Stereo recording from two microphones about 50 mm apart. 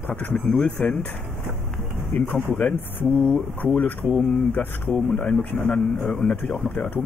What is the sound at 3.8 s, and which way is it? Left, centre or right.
Speech, left.